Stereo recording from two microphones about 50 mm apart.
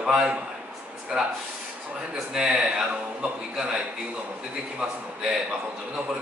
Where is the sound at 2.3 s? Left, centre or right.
Centre.